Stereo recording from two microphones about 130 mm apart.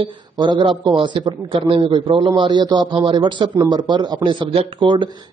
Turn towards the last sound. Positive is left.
turn(degrees=-40)  # may be behind; listen again after turning